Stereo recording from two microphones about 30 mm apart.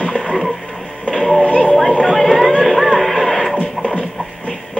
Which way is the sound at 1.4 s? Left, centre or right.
Left.